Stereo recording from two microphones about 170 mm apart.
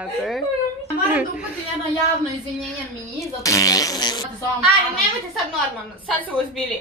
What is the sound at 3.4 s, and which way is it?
Speech, 20° left (ahead or behind).